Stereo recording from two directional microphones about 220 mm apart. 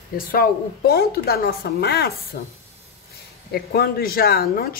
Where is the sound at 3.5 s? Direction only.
45° left (ahead or behind).